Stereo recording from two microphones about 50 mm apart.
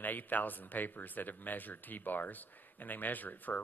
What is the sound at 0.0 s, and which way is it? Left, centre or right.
Speech, left.